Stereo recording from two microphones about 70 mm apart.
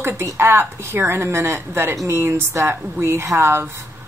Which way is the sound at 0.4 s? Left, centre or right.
Right.